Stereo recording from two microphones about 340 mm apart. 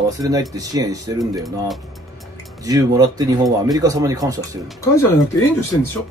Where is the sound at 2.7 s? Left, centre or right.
Centre.